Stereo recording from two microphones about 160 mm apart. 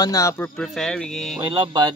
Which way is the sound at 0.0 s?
20° left (ahead or behind).